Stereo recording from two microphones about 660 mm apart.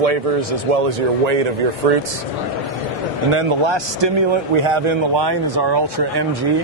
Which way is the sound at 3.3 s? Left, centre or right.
Right.